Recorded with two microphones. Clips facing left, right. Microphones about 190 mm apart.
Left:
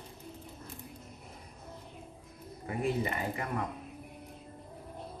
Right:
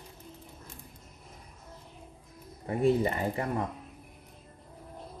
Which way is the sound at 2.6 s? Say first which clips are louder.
Right 7 dB; 35° right (ahead or behind).